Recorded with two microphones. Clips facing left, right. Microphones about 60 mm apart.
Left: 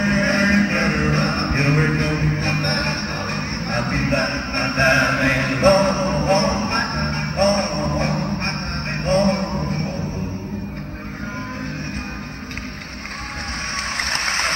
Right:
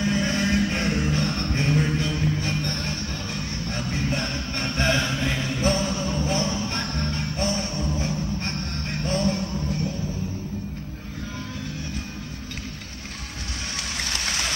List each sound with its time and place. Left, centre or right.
0.0 s music: left
13.9 s applause: left